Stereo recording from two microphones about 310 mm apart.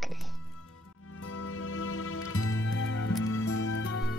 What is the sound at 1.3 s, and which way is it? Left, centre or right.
Music, left.